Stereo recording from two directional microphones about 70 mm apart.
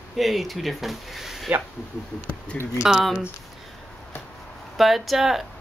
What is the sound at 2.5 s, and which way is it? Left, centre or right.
Speech, centre.